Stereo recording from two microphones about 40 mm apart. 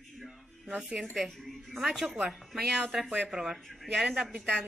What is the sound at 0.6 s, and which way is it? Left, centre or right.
Speech, right.